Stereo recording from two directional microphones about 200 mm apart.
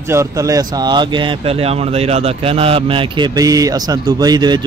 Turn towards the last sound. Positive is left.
turn(degrees=-20)  # may be behind; listen again after turning